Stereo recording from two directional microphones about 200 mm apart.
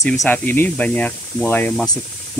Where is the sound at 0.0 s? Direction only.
5° left (ahead or behind).